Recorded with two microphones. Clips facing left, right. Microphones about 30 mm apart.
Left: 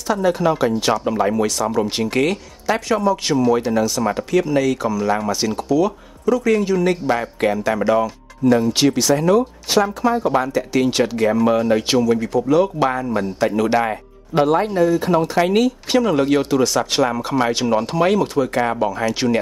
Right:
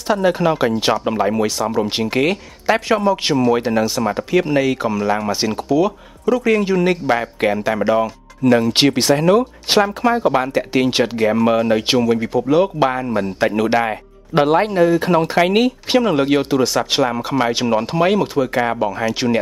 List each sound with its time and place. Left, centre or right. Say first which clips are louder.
0.1 s speech: right 2 dB; right
4.1 s speech: right 1 dB; centre
4.6 s speech: right 1 dB; right
8.4 s speech: right 1 dB; right
8.7 s speech: right 2 dB; right
10.1 s speech: right 2 dB; right
14.3 s speech: right 2 dB; right
15.3 s speech: right 2 dB; right
16.2 s speech: right 1 dB; centre